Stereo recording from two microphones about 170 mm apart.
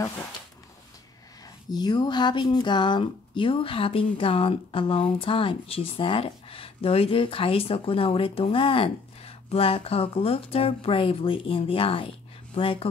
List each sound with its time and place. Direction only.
1.7 s speech: 25° left (ahead or behind)